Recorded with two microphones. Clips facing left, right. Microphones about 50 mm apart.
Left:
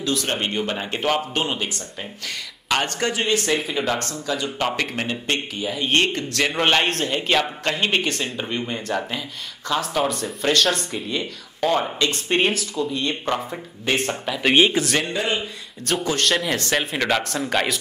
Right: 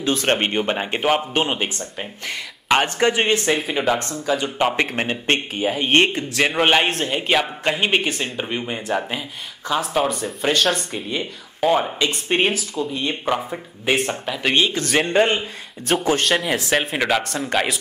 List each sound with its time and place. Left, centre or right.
0.0 s speech: right
3.7 s speech: centre
11.1 s speech: centre
14.5 s speech: centre
15.0 s speech: right
15.9 s speech: centre
17.2 s speech: centre